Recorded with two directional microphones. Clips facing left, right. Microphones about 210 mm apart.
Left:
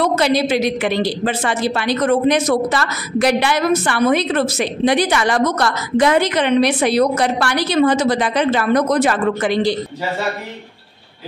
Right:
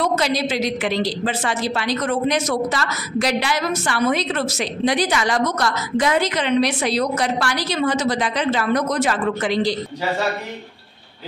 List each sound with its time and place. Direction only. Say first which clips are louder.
0.0 s a woman's voice: left 4 dB; 60° left (ahead or behind)